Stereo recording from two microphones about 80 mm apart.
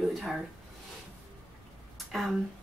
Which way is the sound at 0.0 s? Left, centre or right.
Centre.